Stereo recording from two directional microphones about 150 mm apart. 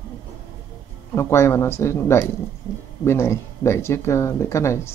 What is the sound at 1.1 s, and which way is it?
Speech, 15° left (ahead or behind).